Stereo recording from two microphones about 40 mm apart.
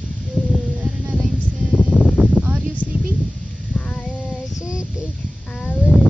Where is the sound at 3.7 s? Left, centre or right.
Left.